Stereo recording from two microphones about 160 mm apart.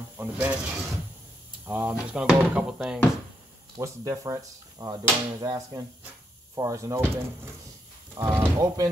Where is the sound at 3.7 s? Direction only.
25° right (ahead or behind).